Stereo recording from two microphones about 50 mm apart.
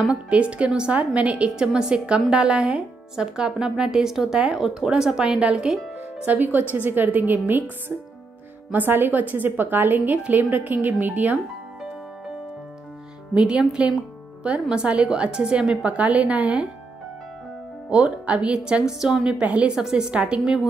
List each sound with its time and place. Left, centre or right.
0.1 s a woman's voice: right
6.2 s a woman's voice: right
8.7 s a woman's voice: right
13.3 s a woman's voice: centre
17.8 s speech: right
19.4 s a woman's voice: right
19.7 s speech: centre